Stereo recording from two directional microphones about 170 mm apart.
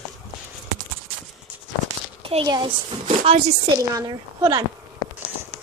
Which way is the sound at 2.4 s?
25° right (ahead or behind).